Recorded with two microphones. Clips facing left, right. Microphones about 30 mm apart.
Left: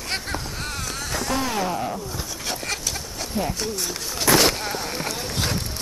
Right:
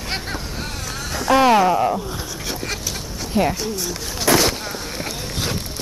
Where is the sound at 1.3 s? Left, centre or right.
Right.